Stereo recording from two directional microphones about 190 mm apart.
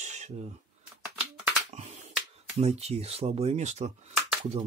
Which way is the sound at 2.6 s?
35° right (ahead or behind).